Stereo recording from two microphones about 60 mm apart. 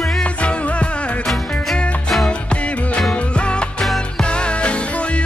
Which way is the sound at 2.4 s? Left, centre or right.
Left.